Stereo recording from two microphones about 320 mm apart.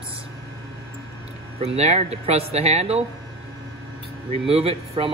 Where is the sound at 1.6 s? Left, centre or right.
Centre.